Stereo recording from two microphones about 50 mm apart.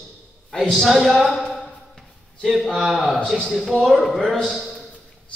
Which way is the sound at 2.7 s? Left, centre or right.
Centre.